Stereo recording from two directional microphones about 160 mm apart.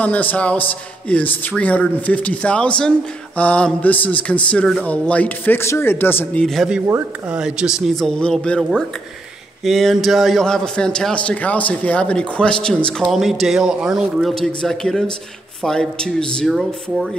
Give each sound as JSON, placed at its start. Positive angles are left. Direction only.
{"t": 0.0, "sound": "a man's voice", "side_deg": 10}
{"t": 6.4, "sound": "a man's voice", "side_deg": 0}